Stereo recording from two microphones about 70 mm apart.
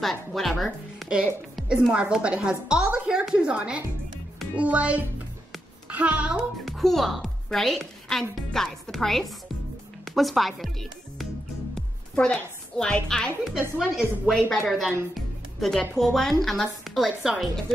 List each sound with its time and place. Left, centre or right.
0.0 s a woman's voice: centre
1.0 s a woman's voice: centre
6.6 s a woman's voice: centre
13.7 s a woman's voice: centre
15.1 s music: centre
16.0 s a woman's voice: centre